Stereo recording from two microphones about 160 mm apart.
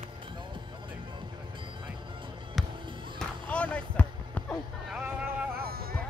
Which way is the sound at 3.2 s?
5° left (ahead or behind).